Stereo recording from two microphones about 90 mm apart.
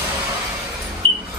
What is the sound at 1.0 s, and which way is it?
Music, 90° right.